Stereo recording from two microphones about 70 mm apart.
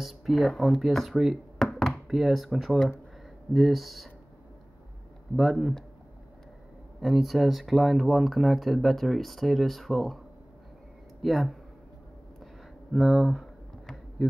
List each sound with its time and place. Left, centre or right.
0.0 s speech: centre
5.3 s speech: centre
7.0 s speech: centre
11.2 s speech: centre
12.9 s a sound: centre